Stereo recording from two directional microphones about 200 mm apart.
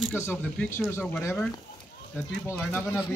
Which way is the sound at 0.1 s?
10° left (ahead or behind).